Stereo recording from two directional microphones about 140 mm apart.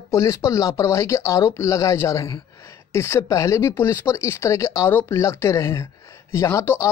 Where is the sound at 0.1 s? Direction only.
20° left (ahead or behind).